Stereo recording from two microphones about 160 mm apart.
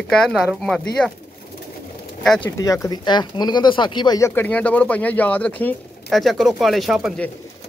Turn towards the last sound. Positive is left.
turn(degrees=0)  # may be behind; listen again after turning